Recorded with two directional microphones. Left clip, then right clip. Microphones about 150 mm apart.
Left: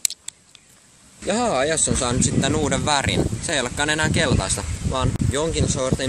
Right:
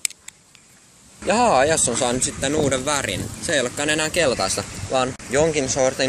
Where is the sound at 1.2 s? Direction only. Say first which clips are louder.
Right 4 dB; 20° left (ahead or behind).